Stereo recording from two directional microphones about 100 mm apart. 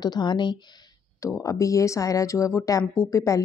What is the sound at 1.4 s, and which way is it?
Speech, 30° left (ahead or behind).